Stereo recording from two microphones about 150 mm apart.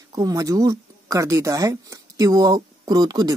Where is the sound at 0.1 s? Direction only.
25° right (ahead or behind).